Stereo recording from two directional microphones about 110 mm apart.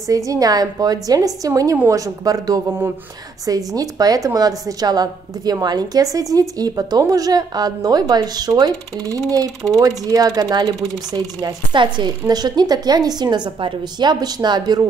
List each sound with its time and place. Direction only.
0.1 s speech: 30° right (ahead or behind)